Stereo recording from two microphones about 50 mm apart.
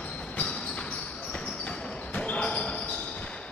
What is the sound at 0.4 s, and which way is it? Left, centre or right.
Basketball bounce, centre.